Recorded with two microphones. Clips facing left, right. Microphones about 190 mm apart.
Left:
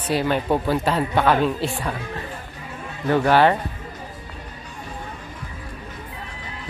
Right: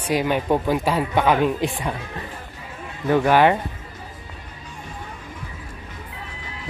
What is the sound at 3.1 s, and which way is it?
Speech, 15° right (ahead or behind).